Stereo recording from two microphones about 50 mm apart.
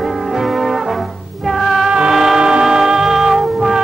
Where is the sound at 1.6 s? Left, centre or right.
Centre.